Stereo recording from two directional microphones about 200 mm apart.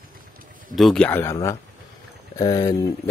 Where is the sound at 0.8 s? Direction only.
5° left (ahead or behind).